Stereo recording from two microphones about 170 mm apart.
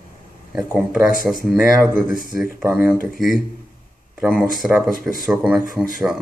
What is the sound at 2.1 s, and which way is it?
Speech, 55° left (ahead or behind).